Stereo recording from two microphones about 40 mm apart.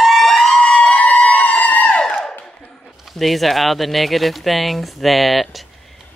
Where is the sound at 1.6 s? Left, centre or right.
Left.